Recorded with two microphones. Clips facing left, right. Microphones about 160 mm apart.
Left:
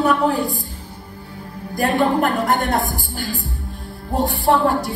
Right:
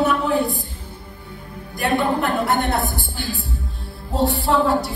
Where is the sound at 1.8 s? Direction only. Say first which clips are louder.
Left 3 dB; 40° left (ahead or behind).